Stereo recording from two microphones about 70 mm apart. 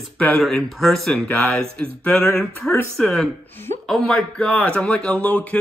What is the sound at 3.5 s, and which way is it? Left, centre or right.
Speech, left.